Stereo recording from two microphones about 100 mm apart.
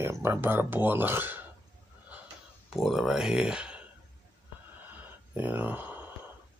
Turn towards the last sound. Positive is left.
turn(degrees=-15)  # may be behind; listen again after turning